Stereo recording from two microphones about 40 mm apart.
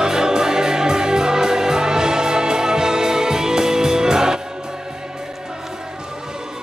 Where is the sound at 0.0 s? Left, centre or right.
Centre.